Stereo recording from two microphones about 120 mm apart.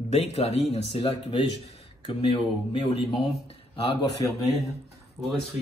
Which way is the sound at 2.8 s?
50° left (ahead or behind).